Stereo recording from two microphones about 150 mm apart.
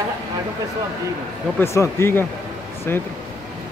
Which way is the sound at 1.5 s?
20° left (ahead or behind).